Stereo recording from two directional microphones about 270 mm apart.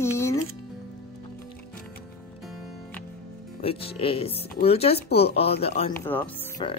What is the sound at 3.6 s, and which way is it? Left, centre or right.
Speech, left.